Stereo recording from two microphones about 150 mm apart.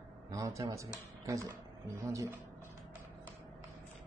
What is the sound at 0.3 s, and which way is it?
Speech, 20° right (ahead or behind).